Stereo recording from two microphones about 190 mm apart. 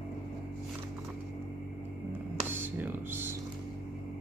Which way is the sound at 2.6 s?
10° right (ahead or behind).